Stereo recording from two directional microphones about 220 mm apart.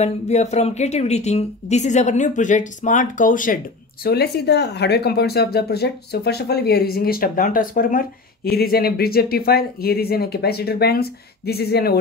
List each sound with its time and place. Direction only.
0.0 s speech: 30° left (ahead or behind); by 12.0 s 45° left (ahead or behind)